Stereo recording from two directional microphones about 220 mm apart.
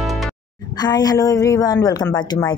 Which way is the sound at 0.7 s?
20° left (ahead or behind).